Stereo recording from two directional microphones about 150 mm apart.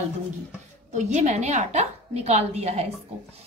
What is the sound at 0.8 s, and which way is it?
A woman's voice, 50° right (ahead or behind).